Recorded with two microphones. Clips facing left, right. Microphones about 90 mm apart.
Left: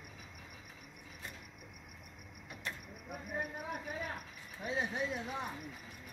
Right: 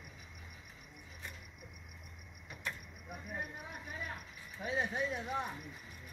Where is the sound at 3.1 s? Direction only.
50° left (ahead or behind).